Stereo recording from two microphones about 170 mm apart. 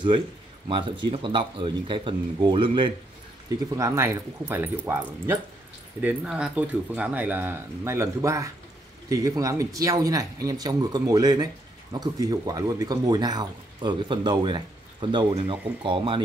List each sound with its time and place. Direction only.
0.7 s speech: 30° right (ahead or behind)